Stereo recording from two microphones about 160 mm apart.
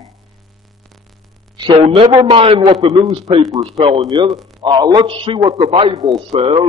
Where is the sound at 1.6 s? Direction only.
35° right (ahead or behind).